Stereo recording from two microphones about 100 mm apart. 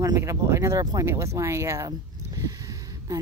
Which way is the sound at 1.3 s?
30° right (ahead or behind).